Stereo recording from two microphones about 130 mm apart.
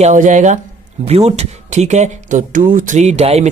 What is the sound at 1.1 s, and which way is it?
Speech, 55° right (ahead or behind).